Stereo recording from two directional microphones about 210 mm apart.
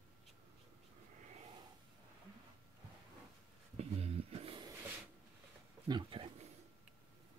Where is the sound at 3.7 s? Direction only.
30° right (ahead or behind).